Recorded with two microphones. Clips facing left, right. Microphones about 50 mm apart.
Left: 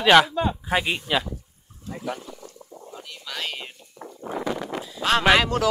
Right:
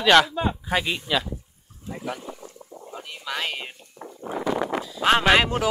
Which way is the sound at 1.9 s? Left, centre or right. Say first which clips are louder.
Left 1 dB; centre.